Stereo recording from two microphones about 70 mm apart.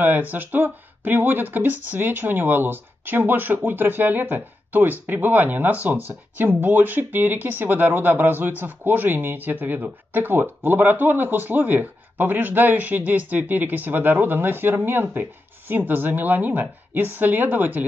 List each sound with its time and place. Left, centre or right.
0.0 s speech: right